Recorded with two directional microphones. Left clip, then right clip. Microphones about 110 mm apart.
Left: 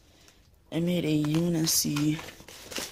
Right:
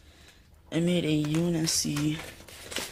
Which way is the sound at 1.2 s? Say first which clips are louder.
Left 1 dB; 85° left.